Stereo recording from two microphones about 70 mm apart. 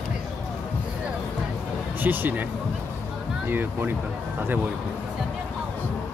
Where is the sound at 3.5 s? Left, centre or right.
Right.